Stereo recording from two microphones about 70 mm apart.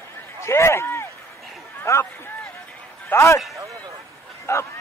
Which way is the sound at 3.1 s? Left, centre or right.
Left.